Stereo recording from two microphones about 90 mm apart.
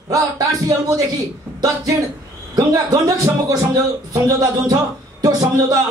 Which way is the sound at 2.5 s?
40° right (ahead or behind).